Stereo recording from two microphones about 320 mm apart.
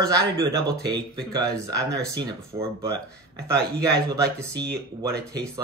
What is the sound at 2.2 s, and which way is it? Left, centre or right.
Speech, centre.